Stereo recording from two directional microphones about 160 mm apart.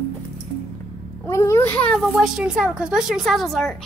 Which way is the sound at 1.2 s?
15° left (ahead or behind).